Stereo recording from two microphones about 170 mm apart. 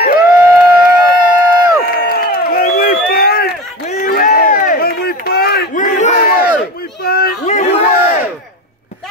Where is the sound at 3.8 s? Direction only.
50° left (ahead or behind).